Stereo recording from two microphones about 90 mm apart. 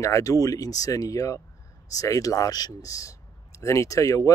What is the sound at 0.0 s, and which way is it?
A man's voice, 35° left (ahead or behind).